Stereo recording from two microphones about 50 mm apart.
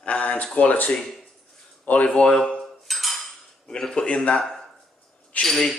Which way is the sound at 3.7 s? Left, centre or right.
Centre.